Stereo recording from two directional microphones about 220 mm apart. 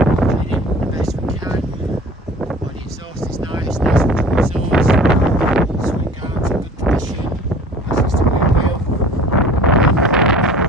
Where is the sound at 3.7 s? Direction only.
5° right (ahead or behind).